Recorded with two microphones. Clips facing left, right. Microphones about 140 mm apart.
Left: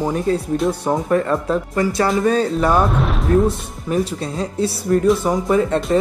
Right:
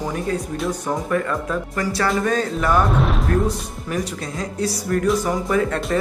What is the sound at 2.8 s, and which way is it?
Speech, centre (ahead or behind).